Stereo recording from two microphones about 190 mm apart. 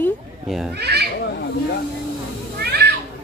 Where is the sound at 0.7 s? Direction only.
60° right (ahead or behind).